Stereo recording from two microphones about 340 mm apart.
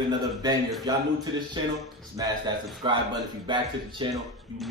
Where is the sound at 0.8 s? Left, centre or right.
Centre.